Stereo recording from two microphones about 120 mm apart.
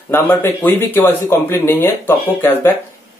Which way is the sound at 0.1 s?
20° left (ahead or behind).